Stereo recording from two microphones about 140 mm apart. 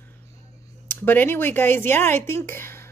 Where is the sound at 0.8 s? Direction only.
15° left (ahead or behind).